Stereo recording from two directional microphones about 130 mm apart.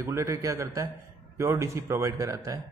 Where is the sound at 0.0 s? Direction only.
25° right (ahead or behind).